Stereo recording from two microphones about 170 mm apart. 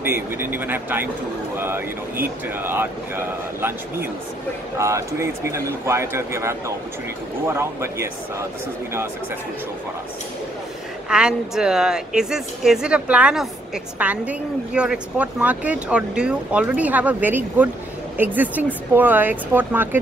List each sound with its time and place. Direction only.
0.0 s speech: 10° right (ahead or behind)
11.1 s speech: 5° right (ahead or behind)